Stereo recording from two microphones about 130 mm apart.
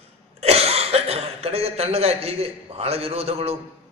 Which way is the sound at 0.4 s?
50° right (ahead or behind).